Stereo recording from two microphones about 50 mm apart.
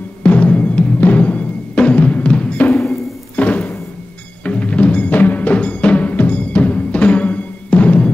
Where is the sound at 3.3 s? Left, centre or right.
Left.